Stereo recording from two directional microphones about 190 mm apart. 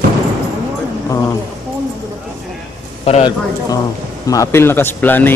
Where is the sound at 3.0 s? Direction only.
30° left (ahead or behind).